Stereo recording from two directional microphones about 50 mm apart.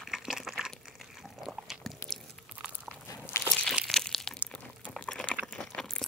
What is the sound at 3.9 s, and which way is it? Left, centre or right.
Crushing, centre.